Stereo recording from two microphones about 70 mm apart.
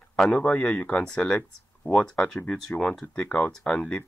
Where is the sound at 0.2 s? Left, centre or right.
Centre.